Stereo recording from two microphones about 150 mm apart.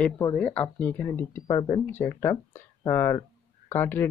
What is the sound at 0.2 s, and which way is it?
Speech, 10° left (ahead or behind).